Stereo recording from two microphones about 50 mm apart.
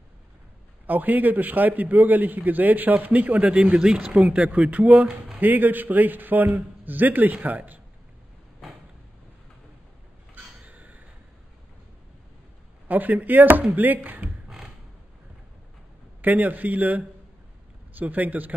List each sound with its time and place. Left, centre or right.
0.8 s a man's voice: right
3.8 s speech: centre
4.3 s a man's voice: right
10.6 s gasp: right
12.8 s a man's voice: right
16.2 s a man's voice: right